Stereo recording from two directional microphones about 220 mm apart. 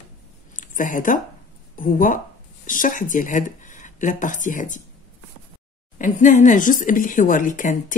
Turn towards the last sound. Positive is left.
turn(degrees=35)  # may be behind; listen again after turning